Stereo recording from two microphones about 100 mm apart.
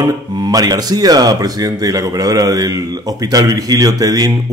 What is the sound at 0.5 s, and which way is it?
Speech, 40° right (ahead or behind).